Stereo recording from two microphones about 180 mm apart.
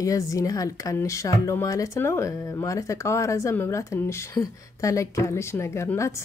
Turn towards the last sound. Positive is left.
turn(degrees=15)  # may be behind; listen again after turning